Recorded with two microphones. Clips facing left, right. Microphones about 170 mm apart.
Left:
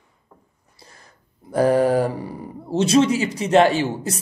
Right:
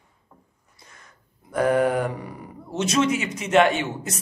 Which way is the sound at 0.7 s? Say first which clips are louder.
Left 3 dB; 35° left (ahead or behind).